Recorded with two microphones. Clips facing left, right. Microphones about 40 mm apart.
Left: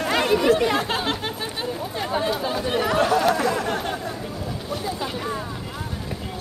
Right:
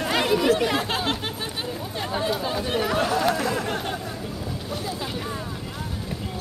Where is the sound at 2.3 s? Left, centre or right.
Centre.